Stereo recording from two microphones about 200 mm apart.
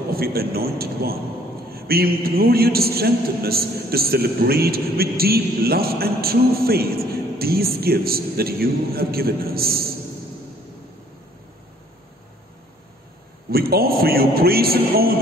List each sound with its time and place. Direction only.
0.1 s a man's voice: 50° right (ahead or behind)
13.5 s a man's voice: 50° right (ahead or behind)